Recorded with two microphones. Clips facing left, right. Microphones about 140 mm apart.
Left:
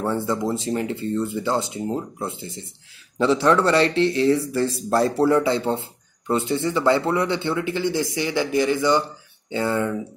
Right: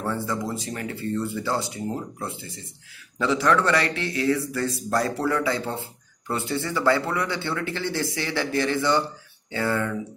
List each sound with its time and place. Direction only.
0.0 s a man's voice: 25° left (ahead or behind)